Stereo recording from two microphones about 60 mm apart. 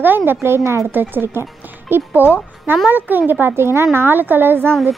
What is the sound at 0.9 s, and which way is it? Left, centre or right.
A woman's voice, right.